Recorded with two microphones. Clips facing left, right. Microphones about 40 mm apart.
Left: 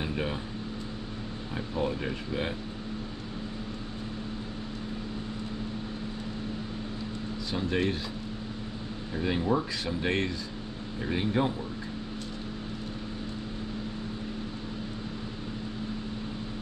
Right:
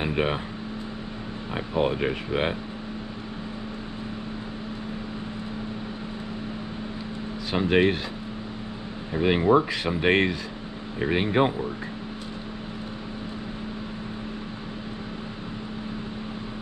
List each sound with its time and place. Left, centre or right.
0.0 s speech: right
1.5 s speech: right
7.7 s speech: right
9.1 s speech: right